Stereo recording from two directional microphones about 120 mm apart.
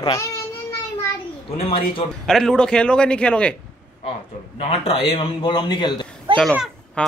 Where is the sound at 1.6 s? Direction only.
55° left (ahead or behind).